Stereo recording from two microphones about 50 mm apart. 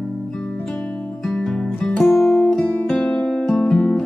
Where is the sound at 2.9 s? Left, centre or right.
Centre.